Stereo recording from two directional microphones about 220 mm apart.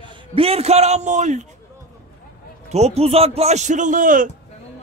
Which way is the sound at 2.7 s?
30° right (ahead or behind).